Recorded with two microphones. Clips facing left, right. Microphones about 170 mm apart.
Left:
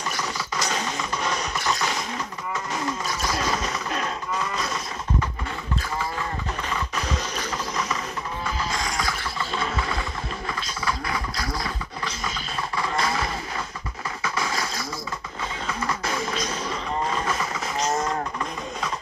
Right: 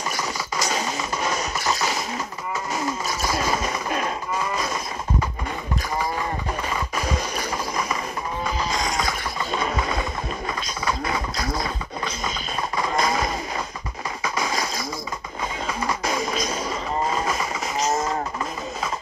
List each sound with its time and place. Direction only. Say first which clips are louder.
0.1 s printer: right 2 dB; 10° right (ahead or behind)
1.7 s a sound: right 2 dB; 5° right (ahead or behind)
2.7 s livestock: right 2 dB; 10° right (ahead or behind)
6.7 s mechanisms: right 1 dB; 10° right (ahead or behind)
8.5 s music: right 3 dB; 15° right (ahead or behind)
10.5 s a sound: right 1 dB; 20° right (ahead or behind)
15.6 s music: right 2 dB; 15° right (ahead or behind)
17.0 s vehicle: right 2 dB; 10° right (ahead or behind)